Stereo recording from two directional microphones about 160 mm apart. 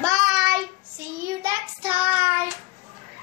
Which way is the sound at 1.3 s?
25° right (ahead or behind).